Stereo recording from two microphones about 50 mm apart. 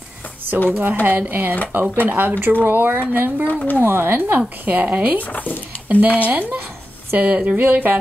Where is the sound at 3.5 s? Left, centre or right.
Left.